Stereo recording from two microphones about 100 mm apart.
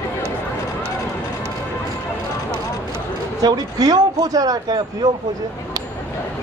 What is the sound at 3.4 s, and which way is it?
Speech, 40° right (ahead or behind).